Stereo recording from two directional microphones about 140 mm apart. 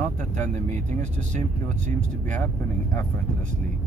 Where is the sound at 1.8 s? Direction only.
65° right (ahead or behind).